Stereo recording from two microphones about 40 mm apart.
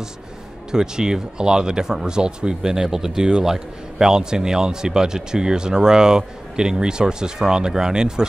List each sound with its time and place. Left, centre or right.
0.7 s speech: centre